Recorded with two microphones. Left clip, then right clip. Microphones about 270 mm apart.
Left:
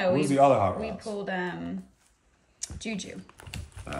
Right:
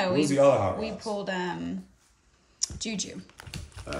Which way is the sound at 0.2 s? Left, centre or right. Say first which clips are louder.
Right 1 dB; left.